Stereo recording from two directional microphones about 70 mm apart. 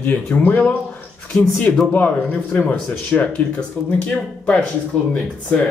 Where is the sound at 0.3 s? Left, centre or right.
Left.